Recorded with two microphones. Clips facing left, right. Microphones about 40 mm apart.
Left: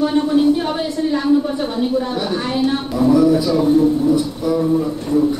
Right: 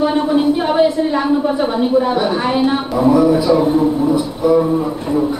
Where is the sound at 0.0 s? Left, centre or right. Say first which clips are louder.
Right 1 dB; centre.